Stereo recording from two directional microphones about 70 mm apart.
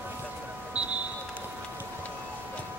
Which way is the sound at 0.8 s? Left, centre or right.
Centre.